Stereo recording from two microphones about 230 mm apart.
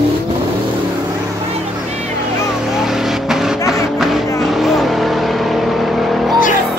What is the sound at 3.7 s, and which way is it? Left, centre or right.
Music, centre.